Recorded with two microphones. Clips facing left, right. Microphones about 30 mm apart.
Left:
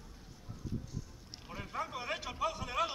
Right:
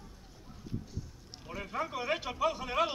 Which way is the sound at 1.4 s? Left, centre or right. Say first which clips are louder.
Right 4 dB; centre.